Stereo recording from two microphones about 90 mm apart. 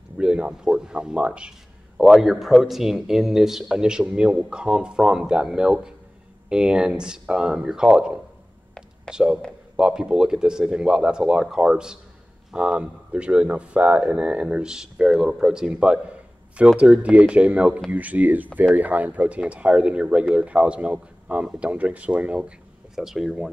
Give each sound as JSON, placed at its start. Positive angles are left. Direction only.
{"t": 0.2, "sound": "speech", "side_deg": -10}
{"t": 9.1, "sound": "speech", "side_deg": -10}